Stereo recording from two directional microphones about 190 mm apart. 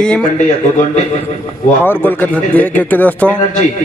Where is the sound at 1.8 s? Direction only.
10° left (ahead or behind).